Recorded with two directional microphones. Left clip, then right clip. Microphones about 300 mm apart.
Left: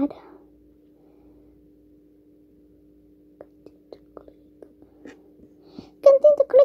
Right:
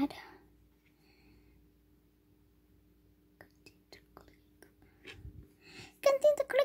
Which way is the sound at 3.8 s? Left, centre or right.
Right.